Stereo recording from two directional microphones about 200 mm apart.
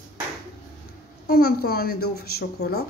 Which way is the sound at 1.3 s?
50° left (ahead or behind).